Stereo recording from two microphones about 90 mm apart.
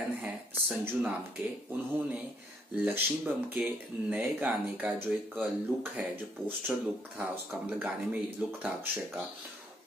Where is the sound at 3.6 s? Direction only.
10° right (ahead or behind).